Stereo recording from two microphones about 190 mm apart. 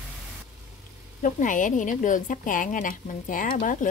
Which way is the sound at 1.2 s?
45° left (ahead or behind).